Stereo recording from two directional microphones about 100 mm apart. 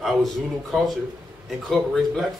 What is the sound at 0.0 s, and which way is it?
Speech, centre (ahead or behind).